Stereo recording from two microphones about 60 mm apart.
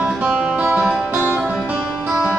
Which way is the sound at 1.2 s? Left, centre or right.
Right.